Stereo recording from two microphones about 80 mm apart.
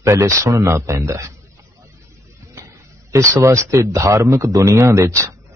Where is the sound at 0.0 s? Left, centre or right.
Right.